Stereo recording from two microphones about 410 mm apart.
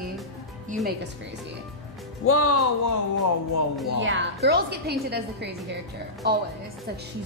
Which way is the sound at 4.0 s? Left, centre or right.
Right.